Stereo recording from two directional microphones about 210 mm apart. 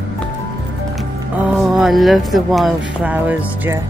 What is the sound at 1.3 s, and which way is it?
Speech, 5° right (ahead or behind).